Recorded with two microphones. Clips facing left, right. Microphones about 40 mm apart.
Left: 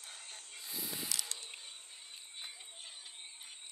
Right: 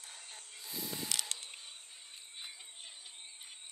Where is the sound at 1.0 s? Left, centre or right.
Right.